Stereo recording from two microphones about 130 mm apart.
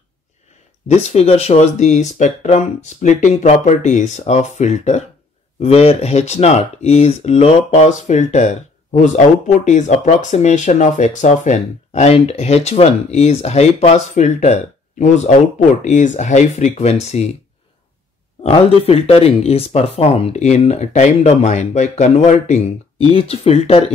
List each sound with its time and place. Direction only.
0.8 s speech: 55° left (ahead or behind)
5.6 s speech: 50° left (ahead or behind)
18.4 s speech: 50° left (ahead or behind)